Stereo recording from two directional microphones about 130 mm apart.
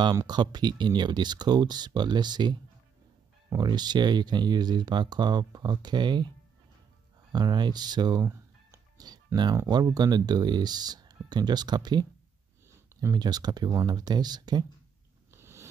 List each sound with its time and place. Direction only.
0.0 s speech: 30° right (ahead or behind)
7.3 s music: 35° right (ahead or behind)
9.7 s speech: 30° right (ahead or behind)
15.3 s a sound: 20° right (ahead or behind)